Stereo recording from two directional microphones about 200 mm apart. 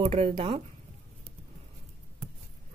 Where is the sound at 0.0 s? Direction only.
30° right (ahead or behind).